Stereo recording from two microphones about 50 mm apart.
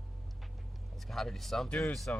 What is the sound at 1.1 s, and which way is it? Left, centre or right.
Speech, centre.